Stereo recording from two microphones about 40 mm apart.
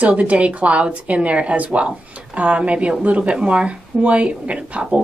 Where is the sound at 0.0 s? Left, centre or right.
Right.